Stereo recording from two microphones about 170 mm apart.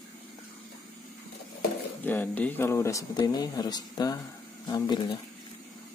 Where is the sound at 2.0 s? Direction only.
10° left (ahead or behind).